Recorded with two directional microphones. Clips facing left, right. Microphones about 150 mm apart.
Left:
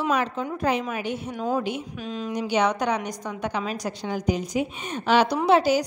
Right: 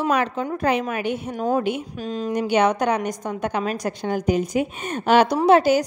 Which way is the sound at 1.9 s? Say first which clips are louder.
Right 4 dB; 40° right (ahead or behind).